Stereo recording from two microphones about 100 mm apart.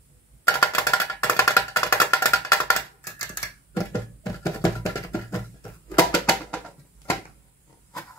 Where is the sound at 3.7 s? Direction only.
35° left (ahead or behind).